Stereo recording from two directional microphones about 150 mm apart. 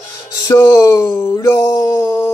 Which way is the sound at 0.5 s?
20° left (ahead or behind).